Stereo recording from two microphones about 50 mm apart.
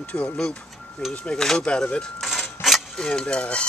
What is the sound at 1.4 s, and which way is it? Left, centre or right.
Speech, centre.